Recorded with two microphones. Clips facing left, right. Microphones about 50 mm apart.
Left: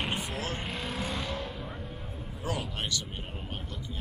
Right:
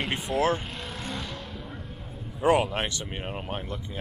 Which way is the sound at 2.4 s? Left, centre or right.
Right.